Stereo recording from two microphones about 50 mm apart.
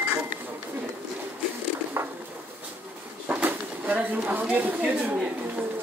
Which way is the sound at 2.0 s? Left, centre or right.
Right.